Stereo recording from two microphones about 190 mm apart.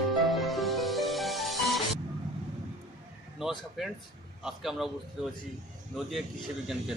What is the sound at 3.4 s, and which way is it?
Speech, centre (ahead or behind).